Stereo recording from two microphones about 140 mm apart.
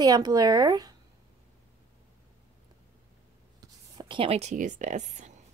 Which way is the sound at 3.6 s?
35° right (ahead or behind).